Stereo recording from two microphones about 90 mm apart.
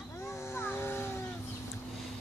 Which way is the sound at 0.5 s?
25° left (ahead or behind).